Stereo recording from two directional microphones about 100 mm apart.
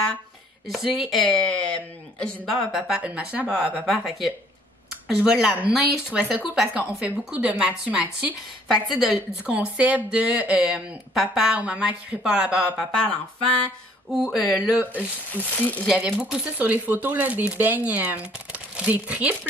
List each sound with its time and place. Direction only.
0.7 s speech: centre (ahead or behind)
3.0 s speech: 15° right (ahead or behind)
8.6 s speech: centre (ahead or behind)
9.5 s speech: 10° right (ahead or behind)
12.7 s speech: 5° left (ahead or behind)
14.6 s speech: 15° right (ahead or behind)
15.3 s speech: 15° left (ahead or behind)
15.9 s speech: 10° right (ahead or behind)